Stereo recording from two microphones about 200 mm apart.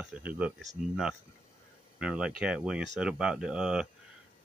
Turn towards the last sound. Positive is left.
turn(degrees=-5)  # may be behind; listen again after turning